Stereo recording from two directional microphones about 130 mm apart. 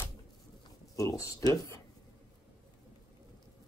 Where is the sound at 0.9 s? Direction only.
25° left (ahead or behind).